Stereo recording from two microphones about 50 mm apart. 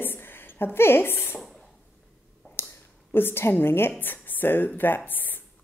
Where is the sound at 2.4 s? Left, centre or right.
Left.